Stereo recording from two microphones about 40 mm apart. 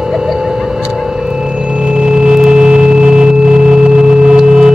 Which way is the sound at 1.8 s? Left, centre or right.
Centre.